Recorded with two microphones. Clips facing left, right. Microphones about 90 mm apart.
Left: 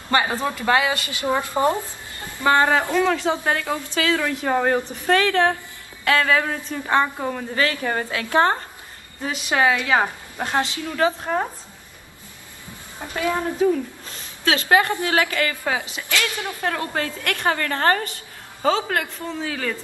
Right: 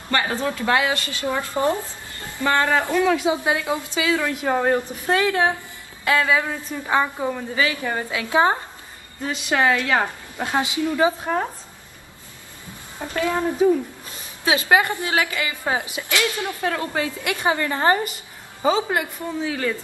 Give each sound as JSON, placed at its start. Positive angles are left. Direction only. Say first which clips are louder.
{"t": 0.3, "sound": "a woman's voice", "louder": "left 1 dB", "side_deg": 10}
{"t": 0.9, "sound": "a woman's voice", "louder": "left 2 dB", "side_deg": 15}
{"t": 3.1, "sound": "a woman's voice", "louder": "right 1 dB", "side_deg": -10}
{"t": 4.4, "sound": "a woman's voice", "louder": "even", "side_deg": 0}
{"t": 8.1, "sound": "a woman's voice", "louder": "right 1 dB", "side_deg": -15}
{"t": 9.2, "sound": "a woman's voice", "louder": "even", "side_deg": 5}
{"t": 10.4, "sound": "a woman's voice", "louder": "right 1 dB", "side_deg": -10}
{"t": 13.3, "sound": "a woman's voice", "louder": "right 1 dB", "side_deg": -15}